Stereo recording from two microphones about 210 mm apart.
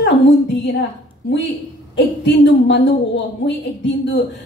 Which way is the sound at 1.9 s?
55° left (ahead or behind).